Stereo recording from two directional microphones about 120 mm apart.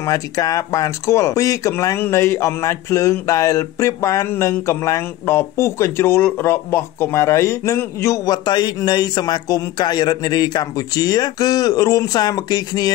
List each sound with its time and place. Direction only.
0.0 s speech: 30° left (ahead or behind)